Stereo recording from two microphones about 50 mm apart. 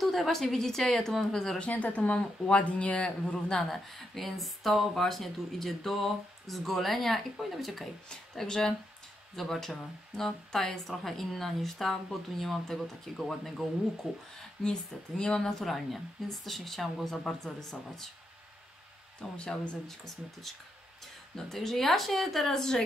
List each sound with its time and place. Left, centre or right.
0.0 s a woman's voice: centre
1.7 s speech: left
4.1 s speech: centre
8.1 s a woman's voice: centre
14.0 s speech: centre
14.6 s a woman's voice: centre
15.6 s speech: centre
19.3 s speech: centre
21.5 s speech: centre